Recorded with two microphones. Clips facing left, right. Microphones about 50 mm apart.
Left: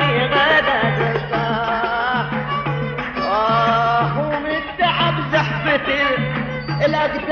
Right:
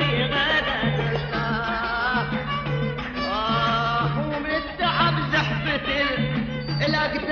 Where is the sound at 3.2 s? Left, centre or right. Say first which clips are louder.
Left 7 dB; left.